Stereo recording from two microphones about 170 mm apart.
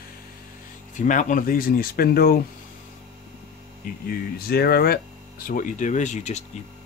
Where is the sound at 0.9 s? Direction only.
50° left (ahead or behind); by 2.4 s 65° left (ahead or behind).